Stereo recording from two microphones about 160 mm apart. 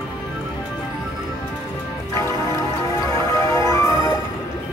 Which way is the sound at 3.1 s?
20° left (ahead or behind).